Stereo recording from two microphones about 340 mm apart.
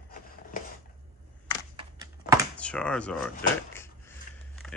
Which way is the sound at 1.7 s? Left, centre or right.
Centre.